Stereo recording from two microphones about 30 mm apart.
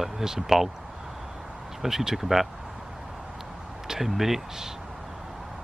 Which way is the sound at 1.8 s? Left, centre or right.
Centre.